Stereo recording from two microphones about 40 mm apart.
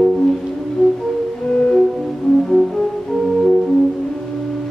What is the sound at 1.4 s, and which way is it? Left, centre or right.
Music, centre.